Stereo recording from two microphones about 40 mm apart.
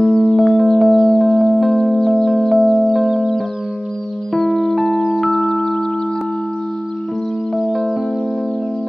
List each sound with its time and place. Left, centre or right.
0.0 s music: centre
0.4 s music: centre
0.9 s music: centre
1.5 s music: centre